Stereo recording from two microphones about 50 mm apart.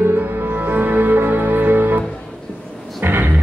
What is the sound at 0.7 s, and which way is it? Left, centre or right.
Music, right.